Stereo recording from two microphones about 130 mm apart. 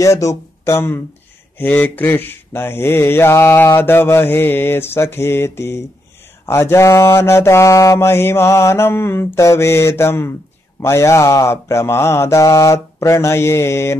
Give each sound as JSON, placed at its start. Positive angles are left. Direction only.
{"t": 0.0, "sound": "speech", "side_deg": 25}
{"t": 1.6, "sound": "mantra", "side_deg": 15}